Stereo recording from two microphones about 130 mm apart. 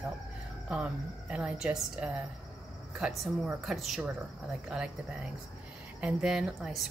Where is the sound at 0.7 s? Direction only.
10° right (ahead or behind).